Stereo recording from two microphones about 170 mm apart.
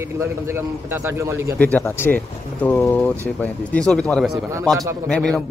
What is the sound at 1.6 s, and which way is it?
Speech, 10° left (ahead or behind).